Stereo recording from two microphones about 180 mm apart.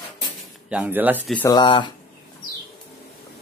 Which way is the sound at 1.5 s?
25° left (ahead or behind).